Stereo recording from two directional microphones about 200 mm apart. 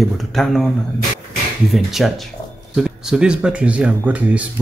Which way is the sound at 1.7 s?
Centre (ahead or behind).